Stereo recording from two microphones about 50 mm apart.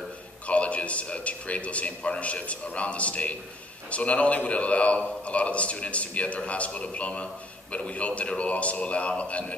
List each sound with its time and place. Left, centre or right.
0.5 s a man's voice: left